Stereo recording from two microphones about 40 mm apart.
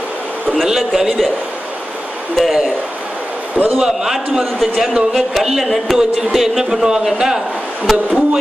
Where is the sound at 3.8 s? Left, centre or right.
Centre.